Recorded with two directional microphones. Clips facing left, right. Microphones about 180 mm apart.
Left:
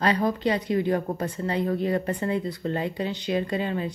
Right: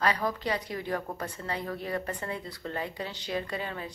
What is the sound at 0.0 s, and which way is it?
A woman's voice, 25° left (ahead or behind).